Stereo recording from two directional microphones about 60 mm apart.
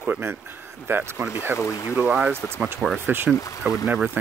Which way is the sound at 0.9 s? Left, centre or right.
Right.